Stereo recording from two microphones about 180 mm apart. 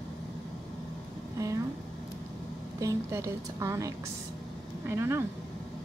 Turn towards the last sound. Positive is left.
turn(degrees=-15)  # may be behind; listen again after turning